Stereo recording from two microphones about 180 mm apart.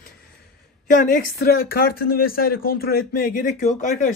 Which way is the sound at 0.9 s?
50° left (ahead or behind).